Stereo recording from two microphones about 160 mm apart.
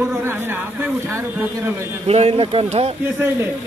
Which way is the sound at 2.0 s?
40° right (ahead or behind).